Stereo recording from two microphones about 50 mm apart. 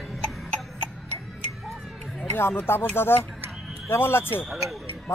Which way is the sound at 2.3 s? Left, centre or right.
Left.